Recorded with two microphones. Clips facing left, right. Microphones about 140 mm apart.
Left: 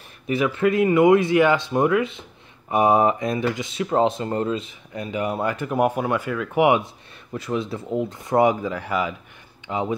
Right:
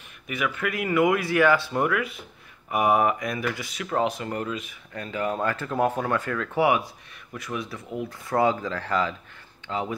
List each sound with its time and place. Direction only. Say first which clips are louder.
0.3 s speech: left 8 dB; 30° left (ahead or behind)
4.9 s speech: left 3 dB; 15° left (ahead or behind)